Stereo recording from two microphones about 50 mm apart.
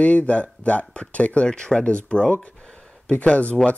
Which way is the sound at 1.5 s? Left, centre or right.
Centre.